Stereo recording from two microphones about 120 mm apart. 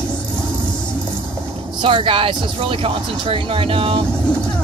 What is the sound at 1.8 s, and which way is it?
Speech, 45° right (ahead or behind).